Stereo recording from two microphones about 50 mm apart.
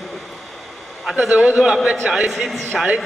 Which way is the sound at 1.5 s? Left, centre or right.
Centre.